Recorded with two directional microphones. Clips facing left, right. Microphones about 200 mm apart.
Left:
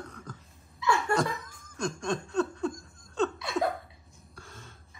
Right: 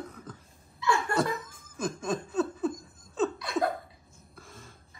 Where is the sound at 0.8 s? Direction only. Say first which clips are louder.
Left 1 dB; 25° left (ahead or behind).